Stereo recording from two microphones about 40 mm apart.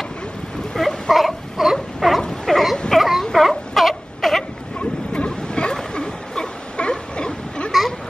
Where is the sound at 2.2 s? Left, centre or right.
Centre.